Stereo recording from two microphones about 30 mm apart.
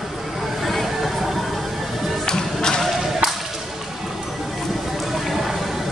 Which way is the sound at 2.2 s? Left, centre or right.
Left.